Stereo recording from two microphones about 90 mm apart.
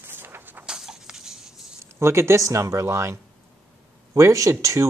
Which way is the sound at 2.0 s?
30° right (ahead or behind).